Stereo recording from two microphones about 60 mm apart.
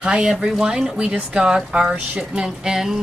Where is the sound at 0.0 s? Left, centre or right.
Centre.